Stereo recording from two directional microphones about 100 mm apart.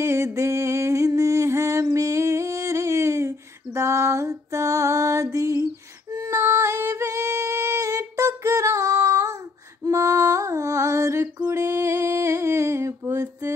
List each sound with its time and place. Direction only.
0.0 s a sound: 30° right (ahead or behind)
6.1 s music: 30° right (ahead or behind)
9.8 s female singing: 30° right (ahead or behind)